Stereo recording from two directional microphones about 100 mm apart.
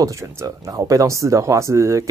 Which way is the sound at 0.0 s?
30° right (ahead or behind).